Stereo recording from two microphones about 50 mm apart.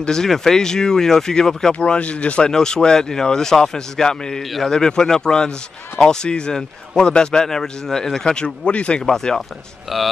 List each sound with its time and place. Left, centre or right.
0.0 s a man's voice: centre
1.8 s a man's voice: left
9.9 s speech: centre